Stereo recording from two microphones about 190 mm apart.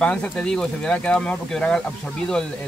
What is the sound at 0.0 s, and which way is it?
Speech, 5° left (ahead or behind).